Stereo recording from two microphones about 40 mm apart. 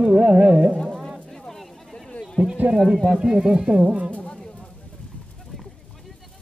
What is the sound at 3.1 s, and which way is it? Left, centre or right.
Speech, centre.